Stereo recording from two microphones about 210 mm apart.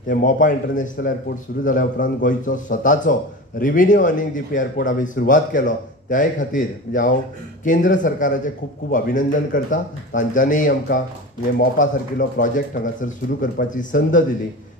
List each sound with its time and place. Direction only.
0.1 s a man's voice: 40° left (ahead or behind)